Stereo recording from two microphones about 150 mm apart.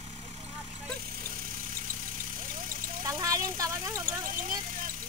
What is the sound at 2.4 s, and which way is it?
Vehicle, 65° right (ahead or behind).